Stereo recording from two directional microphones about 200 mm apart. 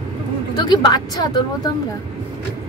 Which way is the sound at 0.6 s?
20° left (ahead or behind).